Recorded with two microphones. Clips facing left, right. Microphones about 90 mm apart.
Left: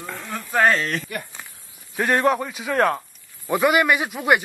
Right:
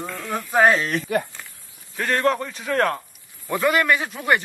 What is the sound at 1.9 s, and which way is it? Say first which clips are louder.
A man's voice: left 2 dB; 15° left (ahead or behind).